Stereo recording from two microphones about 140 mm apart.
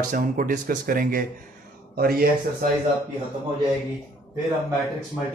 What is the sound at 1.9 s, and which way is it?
Speech, 90° right.